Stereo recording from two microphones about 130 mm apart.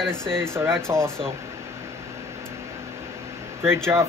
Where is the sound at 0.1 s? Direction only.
5° left (ahead or behind).